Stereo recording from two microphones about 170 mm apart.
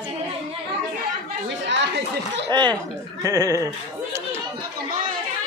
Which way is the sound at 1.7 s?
90° right.